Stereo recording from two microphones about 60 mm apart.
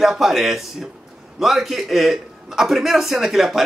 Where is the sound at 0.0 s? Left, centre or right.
Centre.